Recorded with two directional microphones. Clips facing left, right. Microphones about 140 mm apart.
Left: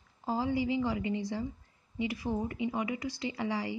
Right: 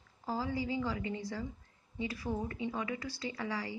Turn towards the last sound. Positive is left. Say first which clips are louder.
# left 4 dB
turn(degrees=20)  # may be behind; listen again after turning